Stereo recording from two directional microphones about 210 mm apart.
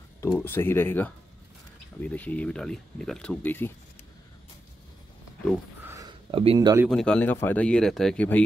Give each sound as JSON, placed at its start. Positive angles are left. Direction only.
{"t": 0.2, "sound": "speech", "side_deg": 15}
{"t": 6.3, "sound": "speech", "side_deg": -25}
{"t": 6.9, "sound": "speech", "side_deg": 5}